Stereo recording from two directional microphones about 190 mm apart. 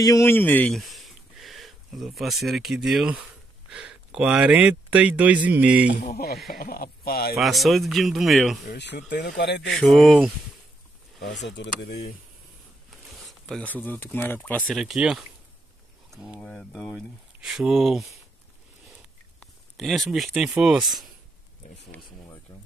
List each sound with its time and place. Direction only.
0.0 s speech: 15° left (ahead or behind); by 5.9 s 5° right (ahead or behind)
5.9 s speech: 55° left (ahead or behind)
7.3 s speech: centre (ahead or behind)
8.6 s speech: 65° left (ahead or behind)
9.8 s speech: 5° left (ahead or behind)
11.1 s speech: 65° left (ahead or behind)
13.1 s speech: centre (ahead or behind)
16.3 s speech: 5° left (ahead or behind)
19.4 s speech: centre (ahead or behind)
21.9 s speech: 10° left (ahead or behind)
22.5 s a sound: 15° left (ahead or behind)